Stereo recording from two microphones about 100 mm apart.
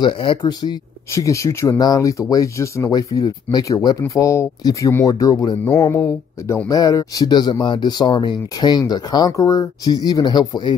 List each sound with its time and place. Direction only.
0.0 s speech: 55° left (ahead or behind)
1.1 s speech: 30° left (ahead or behind)